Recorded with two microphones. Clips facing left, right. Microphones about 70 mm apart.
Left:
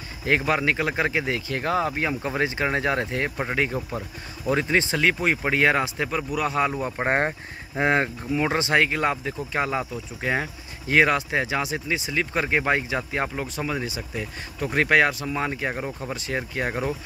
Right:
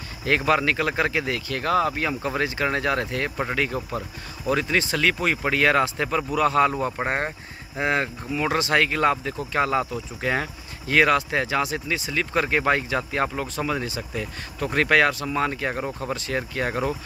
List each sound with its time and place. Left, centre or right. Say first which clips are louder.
0.5 s speech: right 2 dB; centre
5.9 s speech: right 3 dB; centre
7.1 s speech: left 3 dB; left; by 16.9 s centre